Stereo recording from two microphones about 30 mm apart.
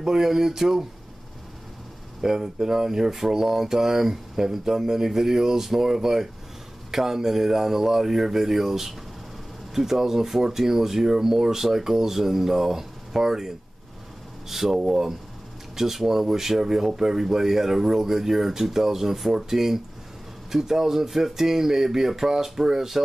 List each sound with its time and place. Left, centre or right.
0.0 s speech: centre
2.2 s speech: centre
14.5 s speech: centre